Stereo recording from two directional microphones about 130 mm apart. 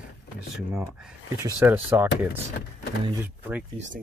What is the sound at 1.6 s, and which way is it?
Speech, 15° right (ahead or behind).